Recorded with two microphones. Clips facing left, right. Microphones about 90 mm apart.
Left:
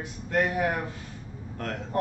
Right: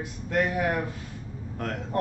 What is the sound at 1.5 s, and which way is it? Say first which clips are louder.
Speech: right 1 dB; centre (ahead or behind).